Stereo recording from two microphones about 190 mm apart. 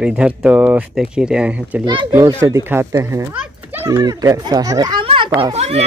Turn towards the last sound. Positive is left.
turn(degrees=-35)  # may be behind; listen again after turning